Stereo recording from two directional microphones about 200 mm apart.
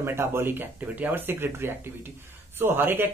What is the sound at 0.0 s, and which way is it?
Speech, 10° right (ahead or behind).